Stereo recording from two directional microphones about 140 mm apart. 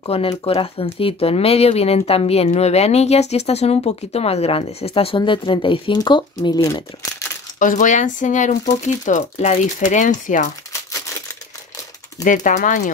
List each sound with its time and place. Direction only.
0.0 s speech: 40° left (ahead or behind); by 7.2 s 25° left (ahead or behind)
7.5 s speech: 70° left (ahead or behind)
12.4 s speech: 70° left (ahead or behind)